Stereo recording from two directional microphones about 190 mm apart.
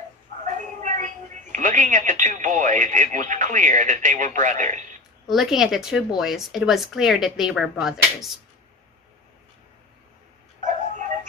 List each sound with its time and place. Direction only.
0.5 s a woman's voice: 40° right (ahead or behind)
5.2 s speech: centre (ahead or behind)